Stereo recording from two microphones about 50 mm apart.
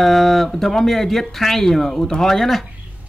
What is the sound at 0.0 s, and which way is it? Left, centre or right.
Speech, centre.